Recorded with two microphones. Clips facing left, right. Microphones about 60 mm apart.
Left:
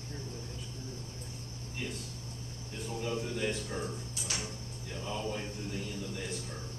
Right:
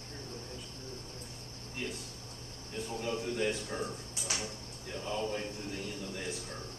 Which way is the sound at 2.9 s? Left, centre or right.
Centre.